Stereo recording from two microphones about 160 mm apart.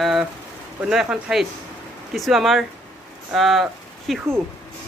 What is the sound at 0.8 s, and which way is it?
Speech, 5° right (ahead or behind).